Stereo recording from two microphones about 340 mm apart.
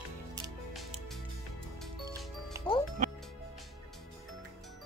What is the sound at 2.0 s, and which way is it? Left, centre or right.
Music, centre.